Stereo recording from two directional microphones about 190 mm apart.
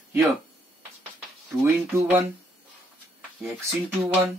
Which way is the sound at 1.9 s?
10° right (ahead or behind).